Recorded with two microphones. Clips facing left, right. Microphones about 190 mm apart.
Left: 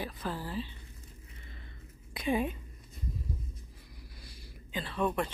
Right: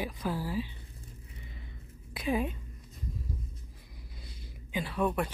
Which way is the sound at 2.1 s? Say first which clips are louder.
Even; centre (ahead or behind).